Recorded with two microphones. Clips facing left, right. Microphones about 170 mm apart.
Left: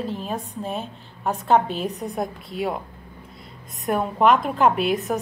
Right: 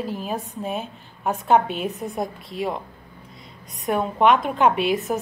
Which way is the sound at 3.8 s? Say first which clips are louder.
Even; centre (ahead or behind).